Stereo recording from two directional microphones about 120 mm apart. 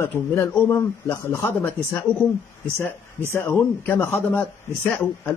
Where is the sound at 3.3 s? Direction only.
20° left (ahead or behind).